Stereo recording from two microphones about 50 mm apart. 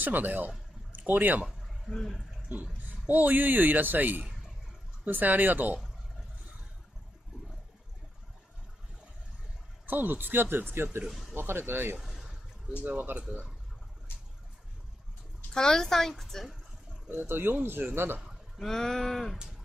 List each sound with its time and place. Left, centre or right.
0.0 s speech: right
1.9 s speech: centre
2.4 s speech: right
9.8 s speech: right
11.1 s a sound: centre
11.3 s speech: right
12.0 s a sound: centre
12.8 s speech: right
15.5 s speech: centre
17.2 s speech: right
18.6 s a sound: centre